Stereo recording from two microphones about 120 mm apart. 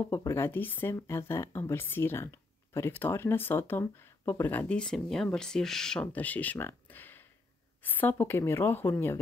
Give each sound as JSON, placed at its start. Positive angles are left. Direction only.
{"t": 0.1, "sound": "speech", "side_deg": 20}